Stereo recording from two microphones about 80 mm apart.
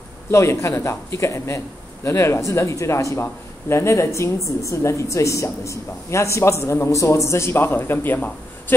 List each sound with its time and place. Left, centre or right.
0.3 s speech: left